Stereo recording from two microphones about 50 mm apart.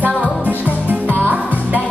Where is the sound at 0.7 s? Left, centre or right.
Right.